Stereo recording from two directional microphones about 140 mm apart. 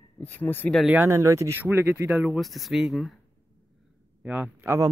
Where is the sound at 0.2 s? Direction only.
15° left (ahead or behind).